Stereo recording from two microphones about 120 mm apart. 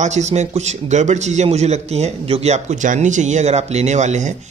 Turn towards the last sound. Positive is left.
turn(degrees=-75)  # may be behind; listen again after turning